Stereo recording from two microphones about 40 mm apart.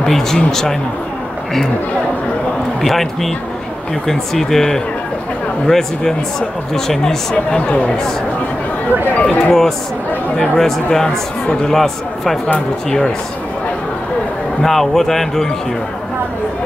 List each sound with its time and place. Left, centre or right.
0.0 s a man's voice: centre
2.8 s speech: centre
7.5 s speech: left
9.1 s speech: left
9.5 s a man's voice: centre
14.6 s speech: centre